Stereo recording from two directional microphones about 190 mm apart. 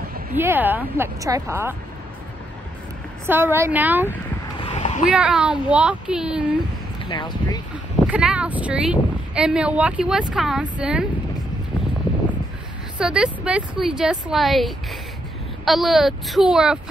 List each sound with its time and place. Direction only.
0.4 s speech: 10° right (ahead or behind)
3.3 s speech: 10° right (ahead or behind)
4.6 s a sound: 30° left (ahead or behind)
5.1 s speech: 5° right (ahead or behind)
7.1 s speech: 25° left (ahead or behind)
8.1 s speech: 5° right (ahead or behind)
13.0 s speech: 5° right (ahead or behind)